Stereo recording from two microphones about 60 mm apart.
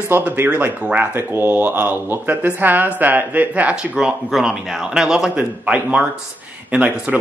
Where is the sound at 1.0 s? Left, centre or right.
Right.